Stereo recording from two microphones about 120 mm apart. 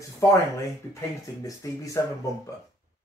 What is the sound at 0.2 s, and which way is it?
Speech, 25° left (ahead or behind).